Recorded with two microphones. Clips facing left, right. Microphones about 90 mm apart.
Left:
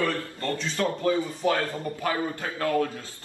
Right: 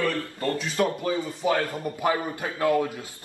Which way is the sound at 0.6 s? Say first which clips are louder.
Even; 15° right (ahead or behind).